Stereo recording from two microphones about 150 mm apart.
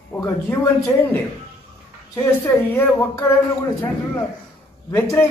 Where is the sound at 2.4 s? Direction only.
15° left (ahead or behind).